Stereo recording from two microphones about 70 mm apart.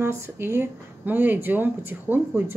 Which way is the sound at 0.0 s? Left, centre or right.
Right.